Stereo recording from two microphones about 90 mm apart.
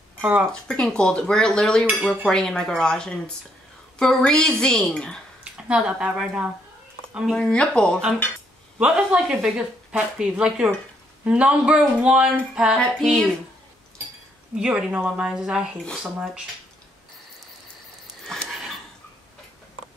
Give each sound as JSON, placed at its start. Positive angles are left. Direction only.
{"t": 0.2, "sound": "speech", "side_deg": -15}
{"t": 0.5, "sound": "speech", "side_deg": 10}
{"t": 5.4, "sound": "speech", "side_deg": -10}
{"t": 7.3, "sound": "speech", "side_deg": 10}
{"t": 8.7, "sound": "speech", "side_deg": -10}
{"t": 12.7, "sound": "music", "side_deg": 5}
{"t": 14.5, "sound": "speech", "side_deg": -10}
{"t": 18.2, "sound": "a sound", "side_deg": 5}